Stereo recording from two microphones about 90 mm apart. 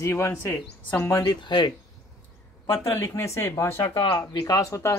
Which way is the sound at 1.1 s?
50° left (ahead or behind).